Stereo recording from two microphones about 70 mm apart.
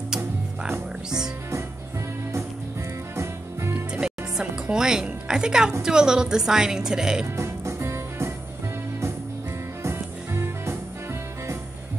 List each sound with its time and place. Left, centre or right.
0.1 s music: centre
3.2 s music: right
3.9 s music: centre
5.8 s a woman's voice: centre
7.3 s music: right
9.8 s music: right